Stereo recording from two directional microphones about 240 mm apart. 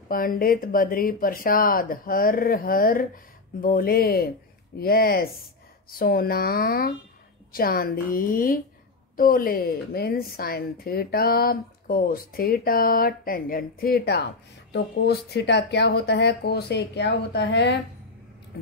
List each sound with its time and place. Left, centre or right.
0.1 s a woman's voice: left